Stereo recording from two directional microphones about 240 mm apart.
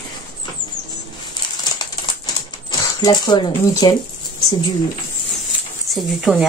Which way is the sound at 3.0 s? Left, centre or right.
Centre.